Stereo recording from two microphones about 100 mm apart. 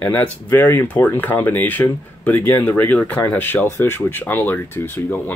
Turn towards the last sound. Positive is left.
turn(degrees=20)  # may be behind; listen again after turning